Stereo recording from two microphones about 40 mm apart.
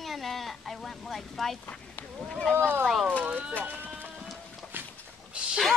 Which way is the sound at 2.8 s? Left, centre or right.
Centre.